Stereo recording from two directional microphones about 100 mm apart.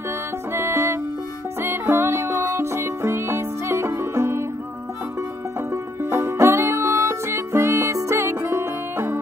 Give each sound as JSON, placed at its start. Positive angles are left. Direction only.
{"t": 0.5, "sound": "music", "side_deg": -25}
{"t": 5.7, "sound": "music", "side_deg": -25}